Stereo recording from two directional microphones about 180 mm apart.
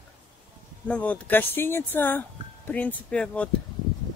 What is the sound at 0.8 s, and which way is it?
Speech, 5° left (ahead or behind).